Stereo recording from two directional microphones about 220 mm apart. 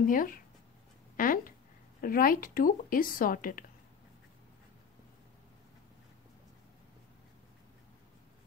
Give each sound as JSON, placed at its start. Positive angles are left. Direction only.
{"t": 0.0, "sound": "speech", "side_deg": 40}